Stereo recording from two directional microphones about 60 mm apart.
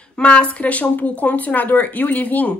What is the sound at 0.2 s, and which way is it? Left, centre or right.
A woman's voice, centre.